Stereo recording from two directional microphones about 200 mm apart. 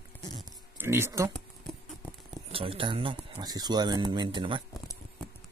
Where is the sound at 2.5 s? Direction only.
25° right (ahead or behind).